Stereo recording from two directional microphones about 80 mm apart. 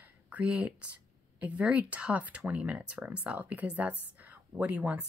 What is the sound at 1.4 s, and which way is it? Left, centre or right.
Speech, centre.